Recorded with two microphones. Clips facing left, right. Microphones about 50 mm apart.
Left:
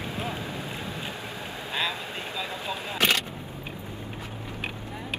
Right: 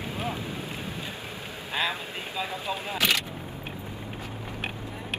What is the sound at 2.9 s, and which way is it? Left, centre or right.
Single-lens reflex camera, left.